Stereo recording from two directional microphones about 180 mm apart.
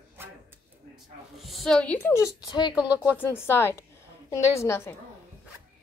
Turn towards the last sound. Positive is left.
turn(degrees=15)  # may be behind; listen again after turning